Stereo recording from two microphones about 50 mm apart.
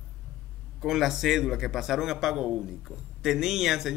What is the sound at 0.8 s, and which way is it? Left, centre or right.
Speech, centre.